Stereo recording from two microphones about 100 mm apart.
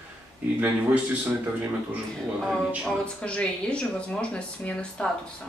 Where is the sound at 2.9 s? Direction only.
10° left (ahead or behind).